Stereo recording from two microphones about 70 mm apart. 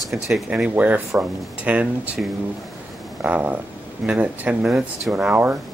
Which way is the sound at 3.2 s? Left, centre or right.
Right.